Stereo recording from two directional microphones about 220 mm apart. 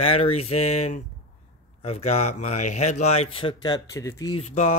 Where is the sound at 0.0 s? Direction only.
25° left (ahead or behind).